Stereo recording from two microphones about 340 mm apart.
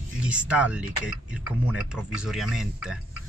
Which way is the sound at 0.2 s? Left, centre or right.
Centre.